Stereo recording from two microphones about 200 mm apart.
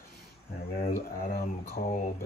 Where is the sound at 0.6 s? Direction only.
50° left (ahead or behind).